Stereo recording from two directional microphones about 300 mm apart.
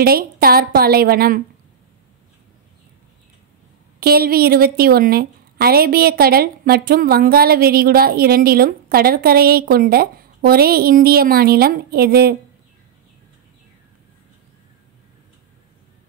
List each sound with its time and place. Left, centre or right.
0.0 s a woman's voice: right
4.0 s a woman's voice: right